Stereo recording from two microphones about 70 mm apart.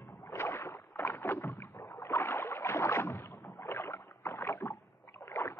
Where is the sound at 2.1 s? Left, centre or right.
Left.